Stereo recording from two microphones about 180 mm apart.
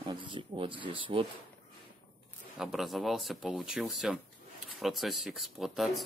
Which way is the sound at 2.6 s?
Centre (ahead or behind).